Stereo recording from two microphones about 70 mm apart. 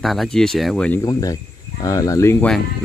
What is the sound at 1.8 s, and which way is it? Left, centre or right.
Speech, left.